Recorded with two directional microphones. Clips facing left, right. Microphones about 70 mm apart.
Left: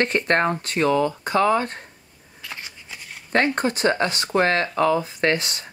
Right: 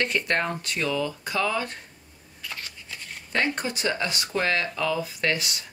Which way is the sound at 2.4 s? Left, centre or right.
Centre.